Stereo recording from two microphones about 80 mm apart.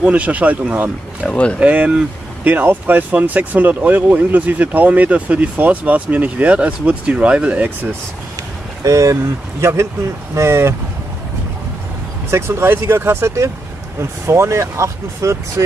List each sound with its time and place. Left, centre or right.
0.0 s speech: centre
1.2 s speech: centre
1.6 s speech: centre
8.8 s speech: right
12.3 s speech: right